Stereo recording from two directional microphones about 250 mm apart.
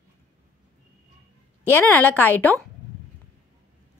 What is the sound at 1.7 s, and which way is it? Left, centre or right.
Speech, centre.